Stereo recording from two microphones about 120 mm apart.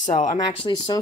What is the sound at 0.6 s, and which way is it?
Speech, 40° left (ahead or behind).